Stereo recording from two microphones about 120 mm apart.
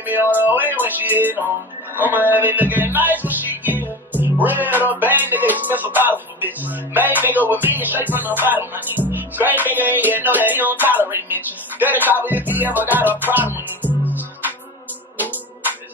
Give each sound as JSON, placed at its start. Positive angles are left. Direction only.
{"t": 0.0, "sound": "music", "side_deg": -15}